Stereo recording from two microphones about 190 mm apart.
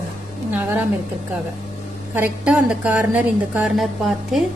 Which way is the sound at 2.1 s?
5° right (ahead or behind).